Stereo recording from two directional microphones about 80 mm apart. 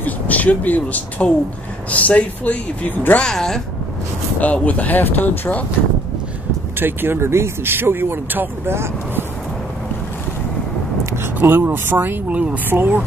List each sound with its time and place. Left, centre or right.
0.0 s speech: centre
3.2 s speech: centre
4.4 s speech: centre
6.8 s speech: right
11.3 s speech: right